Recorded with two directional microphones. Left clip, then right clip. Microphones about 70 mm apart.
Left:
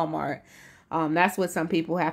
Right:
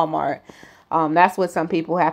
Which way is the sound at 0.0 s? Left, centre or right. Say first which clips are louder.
Right 7 dB; centre.